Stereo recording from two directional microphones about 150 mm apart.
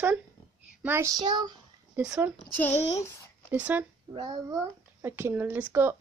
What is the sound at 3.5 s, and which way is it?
Speech, 10° right (ahead or behind).